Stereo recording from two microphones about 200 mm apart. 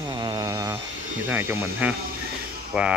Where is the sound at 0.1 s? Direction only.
20° right (ahead or behind).